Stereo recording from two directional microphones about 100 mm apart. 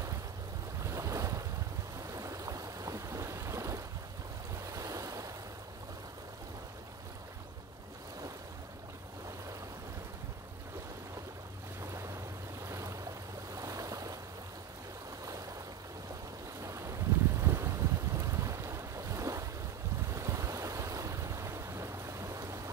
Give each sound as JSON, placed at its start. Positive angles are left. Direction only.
{"t": 0.8, "sound": "waves", "side_deg": -30}
{"t": 2.1, "sound": "boat", "side_deg": -35}
{"t": 4.6, "sound": "waves", "side_deg": -35}
{"t": 11.8, "sound": "waves", "side_deg": -30}
{"t": 12.6, "sound": "stream", "side_deg": -30}
{"t": 13.6, "sound": "waves", "side_deg": -35}
{"t": 16.6, "sound": "boat", "side_deg": -30}
{"t": 20.1, "sound": "waves", "side_deg": -30}